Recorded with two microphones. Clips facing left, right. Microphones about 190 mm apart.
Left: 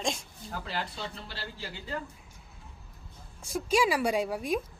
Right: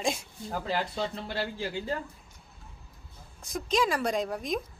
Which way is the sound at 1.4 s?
50° right (ahead or behind).